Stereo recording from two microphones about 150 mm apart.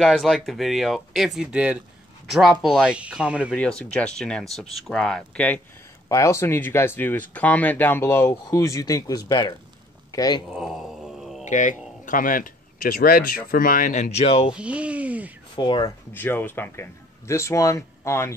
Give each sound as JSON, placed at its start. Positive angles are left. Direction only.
{"t": 0.0, "sound": "speech", "side_deg": 0}
{"t": 3.5, "sound": "speech", "side_deg": 5}
{"t": 6.0, "sound": "a man's voice", "side_deg": 20}
{"t": 10.5, "sound": "groan", "side_deg": 0}
{"t": 11.4, "sound": "speech", "side_deg": 55}
{"t": 14.1, "sound": "speech", "side_deg": 40}
{"t": 14.5, "sound": "speech", "side_deg": -10}
{"t": 15.5, "sound": "speech", "side_deg": 30}
{"t": 16.1, "sound": "speech", "side_deg": 15}